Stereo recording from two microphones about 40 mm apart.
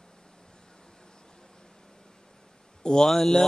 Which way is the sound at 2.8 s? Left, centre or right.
Centre.